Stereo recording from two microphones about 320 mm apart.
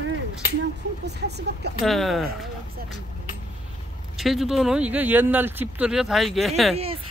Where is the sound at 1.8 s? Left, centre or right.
Centre.